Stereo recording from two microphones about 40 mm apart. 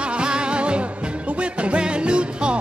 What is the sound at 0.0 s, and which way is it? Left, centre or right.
Music, right.